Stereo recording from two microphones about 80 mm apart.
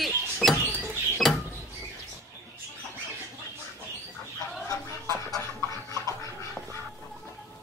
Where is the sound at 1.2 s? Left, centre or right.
Centre.